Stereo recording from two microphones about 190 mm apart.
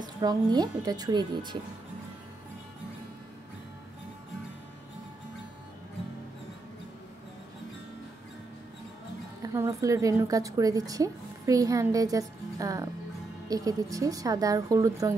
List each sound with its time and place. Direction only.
0.0 s a woman's voice: 20° right (ahead or behind)
9.4 s a woman's voice: 15° right (ahead or behind)